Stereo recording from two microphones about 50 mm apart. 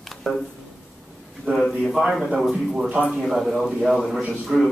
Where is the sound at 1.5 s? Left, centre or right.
Right.